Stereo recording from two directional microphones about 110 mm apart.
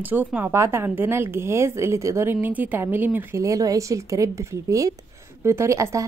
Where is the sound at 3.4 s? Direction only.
30° right (ahead or behind).